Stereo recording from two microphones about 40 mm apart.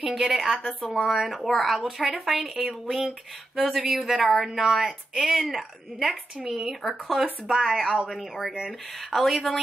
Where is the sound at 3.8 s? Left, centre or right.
Centre.